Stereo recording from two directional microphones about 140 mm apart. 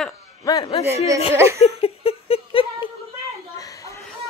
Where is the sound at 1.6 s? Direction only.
45° left (ahead or behind).